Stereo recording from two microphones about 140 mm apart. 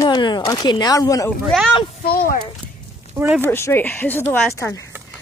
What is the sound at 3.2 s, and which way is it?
Speech, 15° right (ahead or behind).